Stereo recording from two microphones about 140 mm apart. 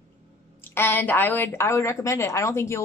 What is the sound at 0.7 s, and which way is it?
Speech, 15° left (ahead or behind).